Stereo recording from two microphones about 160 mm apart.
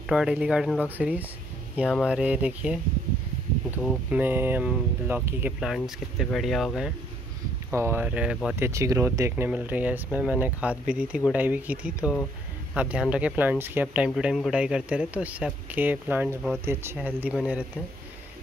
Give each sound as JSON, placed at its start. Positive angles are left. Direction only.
{"t": 0.0, "sound": "speech", "side_deg": -5}
{"t": 3.8, "sound": "speech", "side_deg": 0}
{"t": 4.2, "sound": "speech", "side_deg": -10}
{"t": 7.7, "sound": "speech", "side_deg": -15}
{"t": 8.5, "sound": "speech", "side_deg": -15}